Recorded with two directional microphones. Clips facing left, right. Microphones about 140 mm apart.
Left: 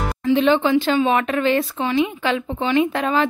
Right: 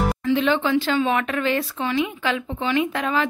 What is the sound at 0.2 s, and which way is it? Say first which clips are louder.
A woman's voice: left 7 dB; 20° left (ahead or behind).